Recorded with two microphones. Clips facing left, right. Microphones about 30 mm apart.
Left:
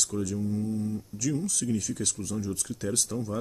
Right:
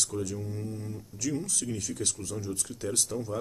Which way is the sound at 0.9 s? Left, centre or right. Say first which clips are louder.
Left 3 dB; centre.